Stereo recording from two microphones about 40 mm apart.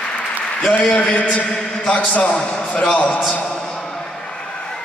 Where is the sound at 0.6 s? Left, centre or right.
Left.